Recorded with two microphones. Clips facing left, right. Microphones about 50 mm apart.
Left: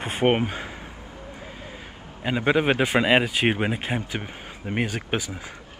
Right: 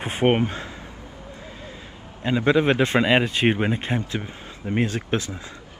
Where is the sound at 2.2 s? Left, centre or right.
Centre.